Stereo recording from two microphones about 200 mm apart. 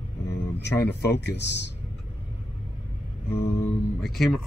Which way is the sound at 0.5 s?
60° left (ahead or behind).